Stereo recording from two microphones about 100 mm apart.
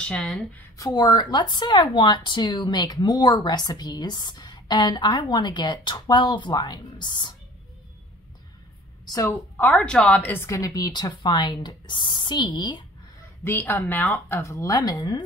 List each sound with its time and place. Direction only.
0.0 s a woman's voice: 5° left (ahead or behind)
0.7 s speech: 40° left (ahead or behind)
9.0 s a woman's voice: 35° left (ahead or behind)
9.6 s a woman's voice: 10° left (ahead or behind)
10.5 s speech: 35° left (ahead or behind)
13.4 s speech: 25° left (ahead or behind)
14.4 s speech: 30° left (ahead or behind)